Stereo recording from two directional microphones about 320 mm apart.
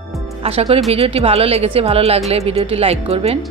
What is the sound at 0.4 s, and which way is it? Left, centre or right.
Speech, centre.